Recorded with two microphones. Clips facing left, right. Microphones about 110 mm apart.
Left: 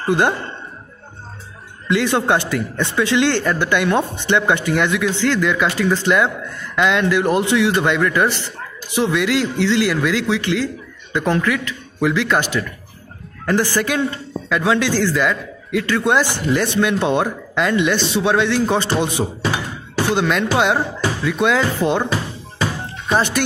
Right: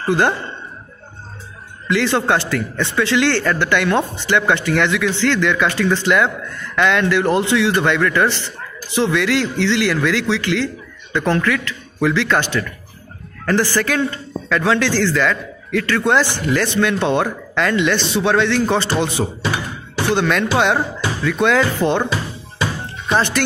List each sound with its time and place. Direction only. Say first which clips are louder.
0.0 s a man's voice: even; 20° left (ahead or behind)
1.9 s a man's voice: even; 20° left (ahead or behind)